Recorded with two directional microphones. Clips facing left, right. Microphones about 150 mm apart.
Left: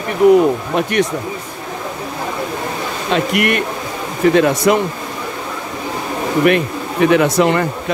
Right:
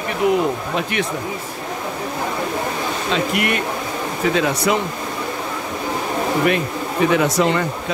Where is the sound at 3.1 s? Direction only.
60° left (ahead or behind).